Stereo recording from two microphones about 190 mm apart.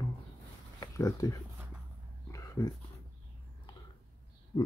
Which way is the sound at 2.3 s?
15° left (ahead or behind).